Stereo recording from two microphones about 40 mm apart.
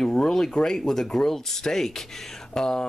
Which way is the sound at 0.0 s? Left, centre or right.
Centre.